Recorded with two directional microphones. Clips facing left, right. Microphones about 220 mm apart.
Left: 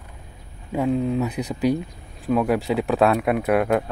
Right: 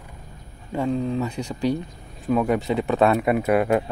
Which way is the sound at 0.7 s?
5° left (ahead or behind).